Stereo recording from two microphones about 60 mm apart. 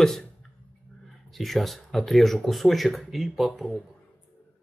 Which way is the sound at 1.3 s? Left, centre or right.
Centre.